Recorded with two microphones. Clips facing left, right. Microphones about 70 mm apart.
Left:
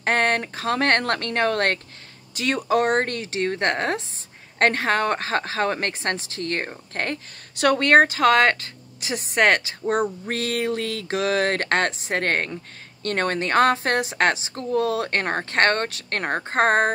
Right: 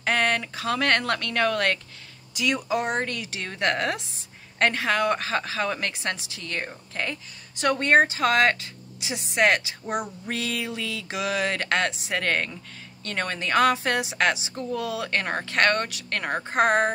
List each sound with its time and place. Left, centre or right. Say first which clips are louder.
0.0 s a woman's voice: left 3 dB; left
3.3 s speech: left 4 dB; left
4.6 s a woman's voice: left 3 dB; left